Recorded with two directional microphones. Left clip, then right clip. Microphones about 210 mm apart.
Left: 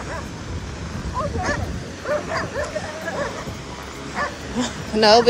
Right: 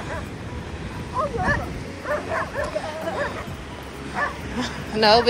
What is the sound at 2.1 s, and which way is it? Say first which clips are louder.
Bow-wow: left 2 dB; 45° left (ahead or behind).